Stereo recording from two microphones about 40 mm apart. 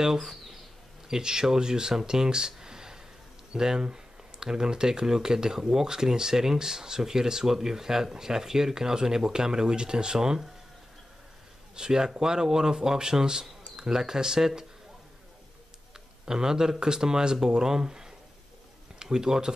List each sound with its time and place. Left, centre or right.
0.0 s speech: centre
11.7 s speech: centre
16.3 s speech: centre